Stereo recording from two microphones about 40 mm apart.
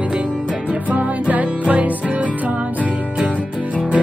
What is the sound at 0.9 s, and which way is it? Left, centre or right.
Music, right.